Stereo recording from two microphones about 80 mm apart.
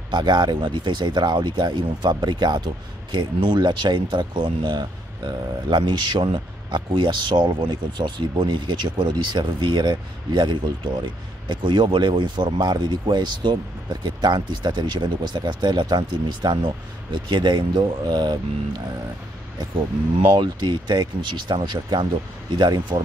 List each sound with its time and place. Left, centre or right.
0.1 s speech: right
20.2 s speech: right